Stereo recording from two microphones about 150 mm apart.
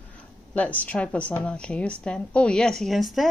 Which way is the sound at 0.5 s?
10° left (ahead or behind).